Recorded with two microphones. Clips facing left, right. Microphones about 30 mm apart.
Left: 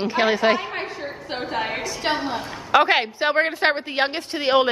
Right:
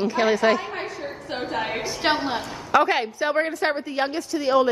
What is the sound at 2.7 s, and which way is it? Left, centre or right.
A woman's voice, left.